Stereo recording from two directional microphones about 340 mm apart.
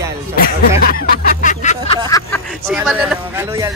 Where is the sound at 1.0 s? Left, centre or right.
Left.